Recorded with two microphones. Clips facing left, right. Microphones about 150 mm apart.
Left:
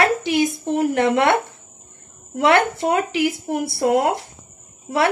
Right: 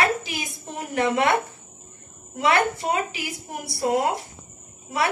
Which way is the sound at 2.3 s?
60° left (ahead or behind).